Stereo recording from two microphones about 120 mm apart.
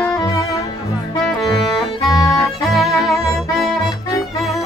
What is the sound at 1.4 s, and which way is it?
Music, centre (ahead or behind).